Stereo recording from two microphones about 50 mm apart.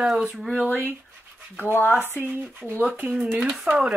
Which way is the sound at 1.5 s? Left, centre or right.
Left.